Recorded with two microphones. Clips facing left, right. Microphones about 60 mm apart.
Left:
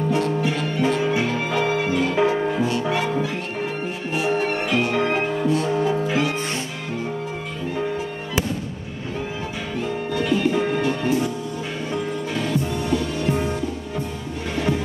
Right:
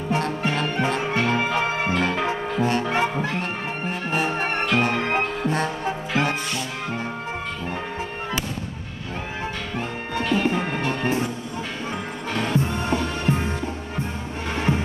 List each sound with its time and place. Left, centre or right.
0.1 s music: right
10.3 s music: right
12.4 s music: right
14.5 s music: right